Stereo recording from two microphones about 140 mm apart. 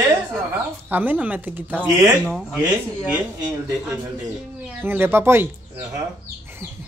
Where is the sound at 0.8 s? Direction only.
15° right (ahead or behind).